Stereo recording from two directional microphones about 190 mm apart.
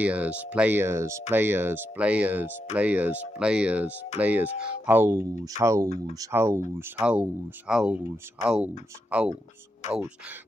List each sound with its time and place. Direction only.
0.0 s speech: 5° right (ahead or behind)